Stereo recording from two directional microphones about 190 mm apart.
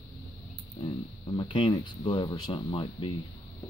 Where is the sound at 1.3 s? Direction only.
25° left (ahead or behind).